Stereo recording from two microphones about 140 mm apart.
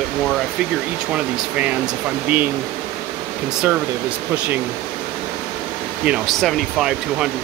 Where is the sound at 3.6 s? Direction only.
10° right (ahead or behind).